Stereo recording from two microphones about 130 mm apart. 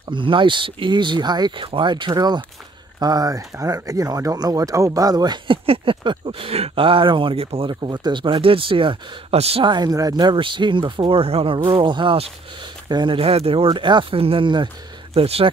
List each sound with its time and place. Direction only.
0.0 s speech: 40° right (ahead or behind)
9.7 s speech: 30° right (ahead or behind)
15.1 s speech: 50° right (ahead or behind)